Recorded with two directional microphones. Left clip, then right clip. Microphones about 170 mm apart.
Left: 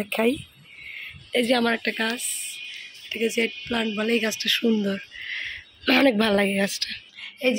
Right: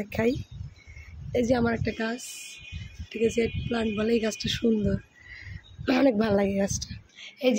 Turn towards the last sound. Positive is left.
turn(degrees=0)  # may be behind; listen again after turning